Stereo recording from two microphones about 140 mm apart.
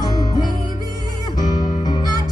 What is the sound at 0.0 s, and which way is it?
Music, 30° left (ahead or behind).